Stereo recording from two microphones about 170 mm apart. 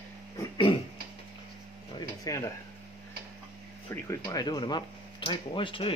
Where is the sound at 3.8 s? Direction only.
20° left (ahead or behind).